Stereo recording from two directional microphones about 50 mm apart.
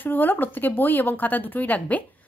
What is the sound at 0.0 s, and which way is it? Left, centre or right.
Speech, left.